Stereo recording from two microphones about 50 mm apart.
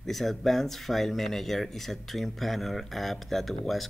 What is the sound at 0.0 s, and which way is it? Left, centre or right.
Speech, centre.